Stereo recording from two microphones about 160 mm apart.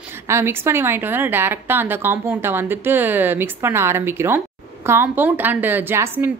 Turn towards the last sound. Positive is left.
turn(degrees=-15)  # may be behind; listen again after turning